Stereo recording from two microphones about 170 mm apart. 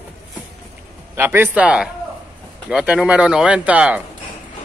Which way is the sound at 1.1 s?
15° right (ahead or behind).